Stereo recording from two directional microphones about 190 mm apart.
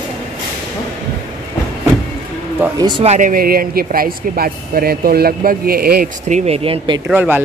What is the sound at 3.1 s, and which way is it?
Speech, 45° right (ahead or behind).